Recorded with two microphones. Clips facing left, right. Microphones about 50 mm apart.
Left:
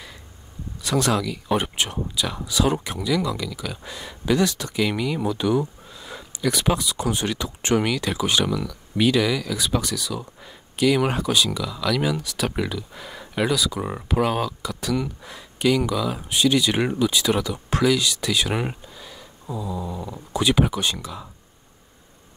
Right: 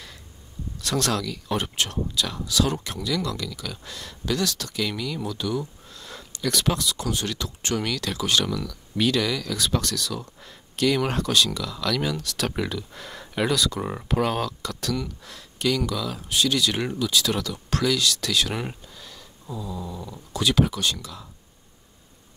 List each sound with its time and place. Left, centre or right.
0.7 s speech: centre
5.9 s speech: centre